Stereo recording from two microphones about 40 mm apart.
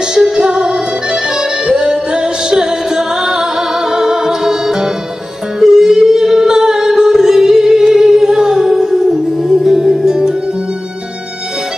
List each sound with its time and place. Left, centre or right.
0.4 s music: centre
5.6 s singing: centre